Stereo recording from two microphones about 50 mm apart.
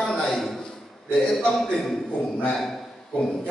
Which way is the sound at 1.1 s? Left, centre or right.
Centre.